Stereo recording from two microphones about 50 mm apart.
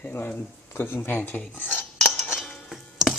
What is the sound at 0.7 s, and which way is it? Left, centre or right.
Speech, left.